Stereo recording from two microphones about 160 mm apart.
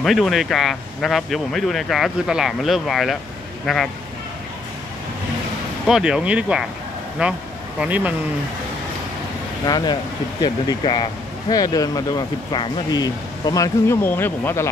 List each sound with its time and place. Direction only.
0.0 s speech: centre (ahead or behind)
5.9 s speech: 5° right (ahead or behind)
9.7 s speech: 25° left (ahead or behind)